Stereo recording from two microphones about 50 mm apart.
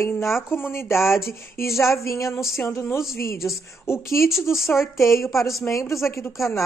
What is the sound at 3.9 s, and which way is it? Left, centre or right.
Speech, left.